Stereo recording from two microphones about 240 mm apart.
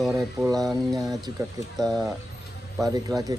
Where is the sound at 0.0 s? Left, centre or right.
Centre.